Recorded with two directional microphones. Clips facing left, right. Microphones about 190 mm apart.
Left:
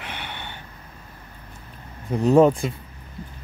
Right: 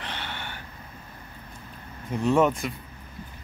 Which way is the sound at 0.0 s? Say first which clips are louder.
Left 1 dB; 15° left (ahead or behind).